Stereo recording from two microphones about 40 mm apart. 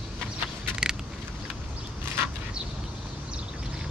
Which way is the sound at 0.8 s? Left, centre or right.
Right.